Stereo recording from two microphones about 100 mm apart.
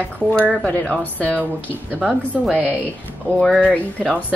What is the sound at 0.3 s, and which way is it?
Speech, 10° left (ahead or behind).